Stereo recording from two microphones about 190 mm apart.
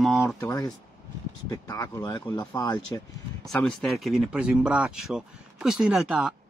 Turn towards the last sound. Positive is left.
turn(degrees=-5)  # may be behind; listen again after turning